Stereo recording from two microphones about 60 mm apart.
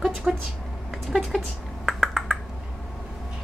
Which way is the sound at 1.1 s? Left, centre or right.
Centre.